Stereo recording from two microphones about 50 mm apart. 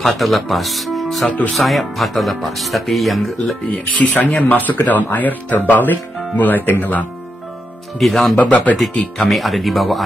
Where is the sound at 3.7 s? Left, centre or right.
Left.